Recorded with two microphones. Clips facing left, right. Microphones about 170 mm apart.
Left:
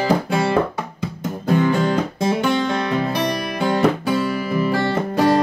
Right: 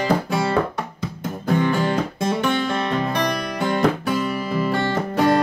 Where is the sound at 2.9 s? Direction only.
10° left (ahead or behind).